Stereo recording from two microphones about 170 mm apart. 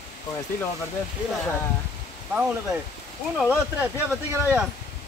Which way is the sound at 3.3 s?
10° right (ahead or behind).